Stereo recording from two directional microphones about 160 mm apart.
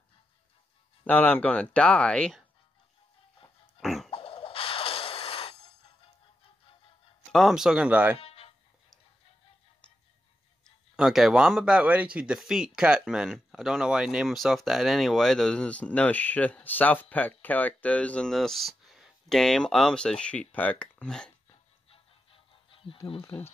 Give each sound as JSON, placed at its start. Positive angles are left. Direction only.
{"t": 1.0, "sound": "speech", "side_deg": 10}
{"t": 3.8, "sound": "a sound", "side_deg": 0}
{"t": 4.1, "sound": "a sound", "side_deg": 35}
{"t": 7.3, "sound": "speech", "side_deg": 0}
{"t": 8.2, "sound": "music", "side_deg": 35}
{"t": 11.0, "sound": "speech", "side_deg": 0}
{"t": 21.9, "sound": "music", "side_deg": 35}
{"t": 23.0, "sound": "speech", "side_deg": 35}